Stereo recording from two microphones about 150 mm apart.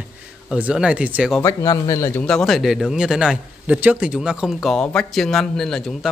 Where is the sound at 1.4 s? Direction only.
20° left (ahead or behind).